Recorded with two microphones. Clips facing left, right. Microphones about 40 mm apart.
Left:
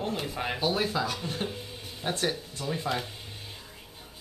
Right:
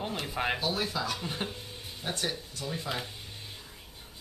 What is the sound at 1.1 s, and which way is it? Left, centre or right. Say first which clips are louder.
Speech: left 2 dB; centre.